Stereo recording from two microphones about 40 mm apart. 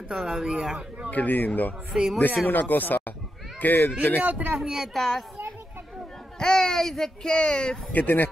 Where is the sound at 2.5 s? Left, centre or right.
Left.